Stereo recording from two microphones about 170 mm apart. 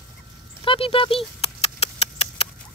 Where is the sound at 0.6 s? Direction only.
30° left (ahead or behind).